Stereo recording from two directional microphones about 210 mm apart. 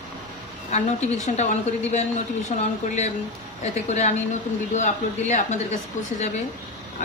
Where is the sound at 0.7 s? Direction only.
35° left (ahead or behind).